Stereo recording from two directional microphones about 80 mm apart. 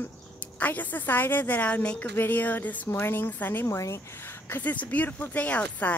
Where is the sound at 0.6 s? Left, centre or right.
Left.